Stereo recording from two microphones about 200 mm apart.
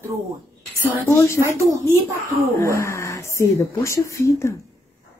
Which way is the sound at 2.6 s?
15° left (ahead or behind).